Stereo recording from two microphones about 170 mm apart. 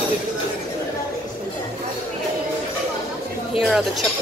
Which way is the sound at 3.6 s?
Centre (ahead or behind).